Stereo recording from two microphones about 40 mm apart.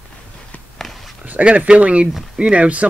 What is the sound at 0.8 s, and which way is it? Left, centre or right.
Whispering, centre.